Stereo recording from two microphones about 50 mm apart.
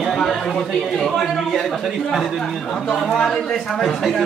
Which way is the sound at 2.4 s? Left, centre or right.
Centre.